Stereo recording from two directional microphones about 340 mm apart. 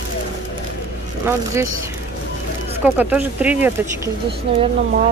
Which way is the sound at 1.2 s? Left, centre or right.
Centre.